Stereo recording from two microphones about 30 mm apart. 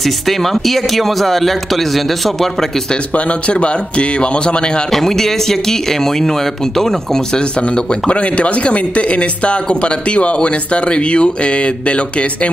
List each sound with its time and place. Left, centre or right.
0.0 s speech: centre
3.3 s speech: left
4.9 s speech: centre
7.3 s speech: left
8.1 s speech: left